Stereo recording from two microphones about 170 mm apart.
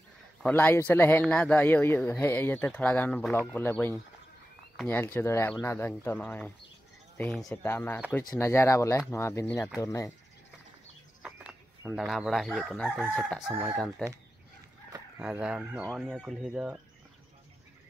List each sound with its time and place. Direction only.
0.4 s speech: 10° left (ahead or behind)
11.2 s speech: 10° right (ahead or behind)
13.5 s fowl: 15° right (ahead or behind)
13.7 s speech: centre (ahead or behind)
15.1 s fowl: 5° right (ahead or behind)
16.0 s speech: centre (ahead or behind)